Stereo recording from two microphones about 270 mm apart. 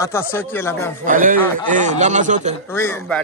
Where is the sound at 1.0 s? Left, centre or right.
Right.